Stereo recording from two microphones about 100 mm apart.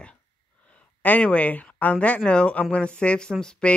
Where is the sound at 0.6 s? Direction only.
15° left (ahead or behind).